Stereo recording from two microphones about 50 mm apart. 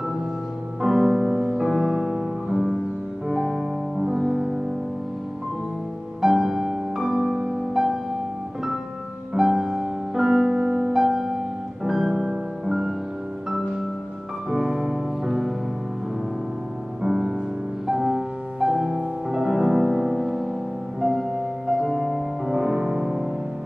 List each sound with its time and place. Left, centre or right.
0.8 s music: centre
6.2 s music: centre
9.3 s music: centre
14.5 s music: centre
17.0 s music: centre